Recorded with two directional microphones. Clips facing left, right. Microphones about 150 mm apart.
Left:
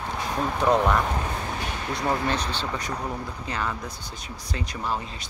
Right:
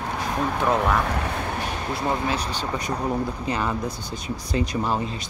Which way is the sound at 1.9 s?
5° right (ahead or behind).